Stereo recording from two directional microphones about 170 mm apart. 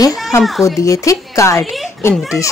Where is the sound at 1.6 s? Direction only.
Centre (ahead or behind).